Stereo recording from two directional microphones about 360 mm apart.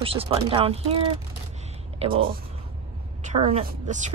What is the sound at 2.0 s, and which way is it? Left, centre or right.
A woman's voice, centre.